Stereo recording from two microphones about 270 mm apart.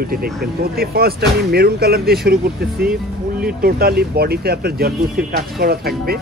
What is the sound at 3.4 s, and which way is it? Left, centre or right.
Speech, right.